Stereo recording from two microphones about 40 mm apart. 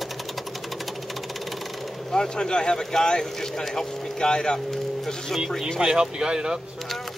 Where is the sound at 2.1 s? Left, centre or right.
Centre.